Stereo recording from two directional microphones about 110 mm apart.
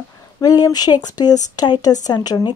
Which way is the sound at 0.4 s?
35° left (ahead or behind).